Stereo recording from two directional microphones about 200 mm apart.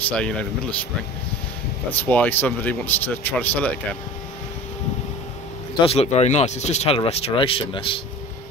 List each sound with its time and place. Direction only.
0.0 s speech: 5° left (ahead or behind)
1.9 s speech: 10° left (ahead or behind)
5.8 s speech: 30° left (ahead or behind)